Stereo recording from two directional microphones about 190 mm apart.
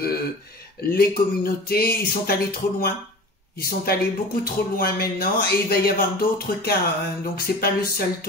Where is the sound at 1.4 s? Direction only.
55° left (ahead or behind).